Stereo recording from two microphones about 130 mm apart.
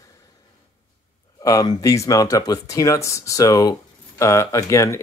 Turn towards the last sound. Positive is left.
turn(degrees=20)  # may be behind; listen again after turning